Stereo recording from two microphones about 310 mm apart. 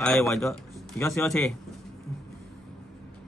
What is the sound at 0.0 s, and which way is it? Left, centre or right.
Speech, centre.